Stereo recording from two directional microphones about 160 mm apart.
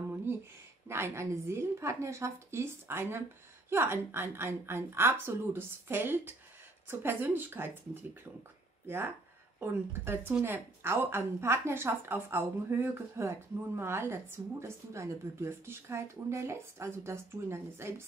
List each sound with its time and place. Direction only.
0.8 s speech: 15° right (ahead or behind)